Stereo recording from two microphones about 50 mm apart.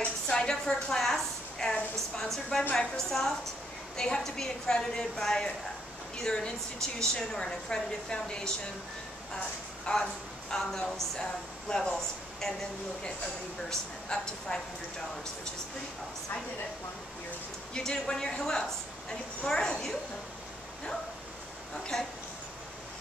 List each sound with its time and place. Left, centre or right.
0.0 s a sound: centre
2.7 s a woman's voice: centre
9.9 s speech: left
10.5 s a woman's voice: centre
14.0 s a woman's voice: centre
17.7 s a woman's voice: centre
21.9 s a woman's voice: centre